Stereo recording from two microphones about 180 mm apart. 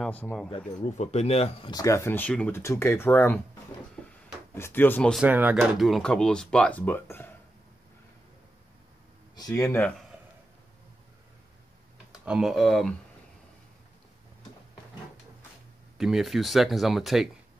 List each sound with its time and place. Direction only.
0.0 s speech: 10° left (ahead or behind)
0.9 s speech: 35° left (ahead or behind)
1.7 s speech: 20° left (ahead or behind)
4.6 s speech: 10° left (ahead or behind)
5.2 s speech: 10° right (ahead or behind); by 7.3 s 10° left (ahead or behind)
9.3 s speech: 20° left (ahead or behind)
12.3 s speech: centre (ahead or behind)
16.0 s speech: centre (ahead or behind)